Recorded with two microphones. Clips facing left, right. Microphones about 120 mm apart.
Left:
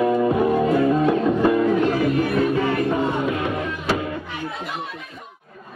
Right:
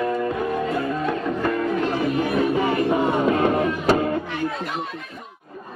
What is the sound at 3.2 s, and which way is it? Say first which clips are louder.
Music: right 5 dB; 40° right (ahead or behind).